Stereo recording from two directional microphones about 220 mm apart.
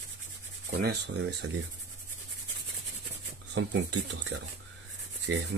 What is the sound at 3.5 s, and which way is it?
Speech, 55° right (ahead or behind).